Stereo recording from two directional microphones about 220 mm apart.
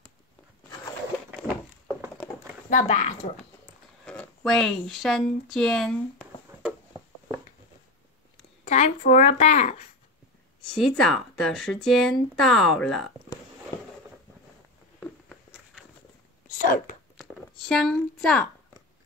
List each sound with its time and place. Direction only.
2.7 s speech: 30° left (ahead or behind)
4.0 s speech: 5° left (ahead or behind)
8.6 s speech: 30° left (ahead or behind)
10.6 s speech: centre (ahead or behind)
15.0 s a sound: centre (ahead or behind)
16.5 s speech: 40° left (ahead or behind)
17.2 s a sound: centre (ahead or behind)